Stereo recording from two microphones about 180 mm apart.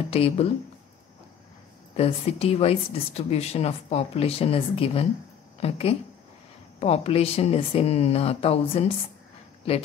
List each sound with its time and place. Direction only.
0.1 s speech: 35° left (ahead or behind)
2.0 s speech: 35° left (ahead or behind)